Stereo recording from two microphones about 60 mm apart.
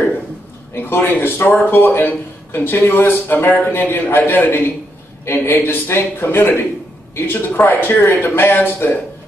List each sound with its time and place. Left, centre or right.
0.7 s speech: left